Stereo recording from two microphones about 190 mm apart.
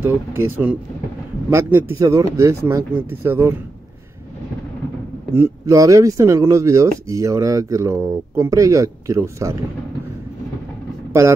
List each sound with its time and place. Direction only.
0.0 s speech: 10° right (ahead or behind)
5.3 s speech: 15° right (ahead or behind)